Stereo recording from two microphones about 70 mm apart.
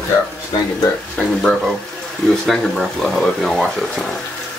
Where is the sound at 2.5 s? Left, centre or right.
Centre.